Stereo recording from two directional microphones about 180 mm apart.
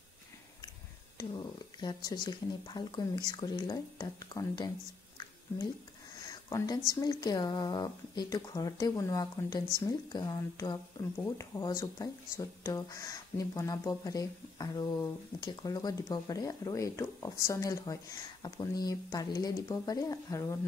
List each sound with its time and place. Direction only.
1.1 s speech: 20° left (ahead or behind)
6.5 s speech: 20° left (ahead or behind)